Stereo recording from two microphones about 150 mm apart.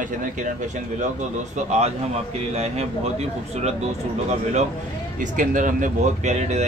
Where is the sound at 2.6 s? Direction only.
45° right (ahead or behind).